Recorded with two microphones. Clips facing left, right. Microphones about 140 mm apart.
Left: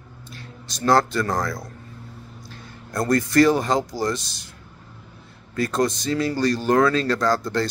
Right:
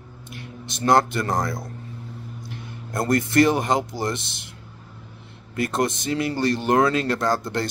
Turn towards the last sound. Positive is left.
turn(degrees=-20)  # may be behind; listen again after turning